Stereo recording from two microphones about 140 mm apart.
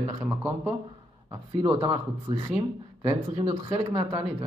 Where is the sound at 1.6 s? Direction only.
40° right (ahead or behind).